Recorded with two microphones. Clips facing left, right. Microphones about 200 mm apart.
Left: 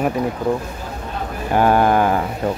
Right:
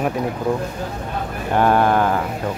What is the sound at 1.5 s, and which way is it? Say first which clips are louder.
Speech: left 1 dB; 5° left (ahead or behind).